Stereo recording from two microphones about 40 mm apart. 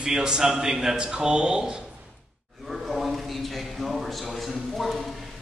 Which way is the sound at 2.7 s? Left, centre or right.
Centre.